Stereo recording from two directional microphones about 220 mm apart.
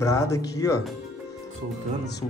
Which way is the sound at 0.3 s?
15° left (ahead or behind).